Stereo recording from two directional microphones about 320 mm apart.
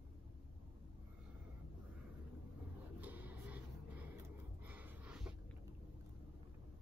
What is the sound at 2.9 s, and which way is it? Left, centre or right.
Vehicle, centre.